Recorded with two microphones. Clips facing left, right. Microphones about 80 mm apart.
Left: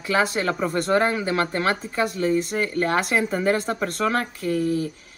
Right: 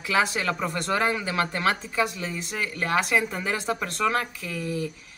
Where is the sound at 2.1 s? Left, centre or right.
Left.